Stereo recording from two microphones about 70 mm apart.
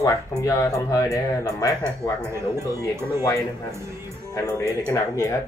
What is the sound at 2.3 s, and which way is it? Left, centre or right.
Speech, right.